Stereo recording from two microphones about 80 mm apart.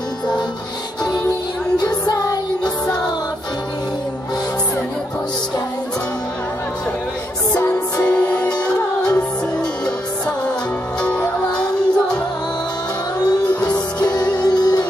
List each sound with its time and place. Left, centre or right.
1.8 s music: left
8.0 s music: centre
11.0 s music: centre
13.7 s music: left